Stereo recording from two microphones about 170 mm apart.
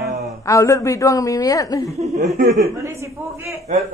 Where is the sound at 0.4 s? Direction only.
20° left (ahead or behind).